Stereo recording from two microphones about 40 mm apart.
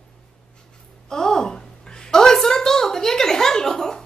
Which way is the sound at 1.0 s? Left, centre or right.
Centre.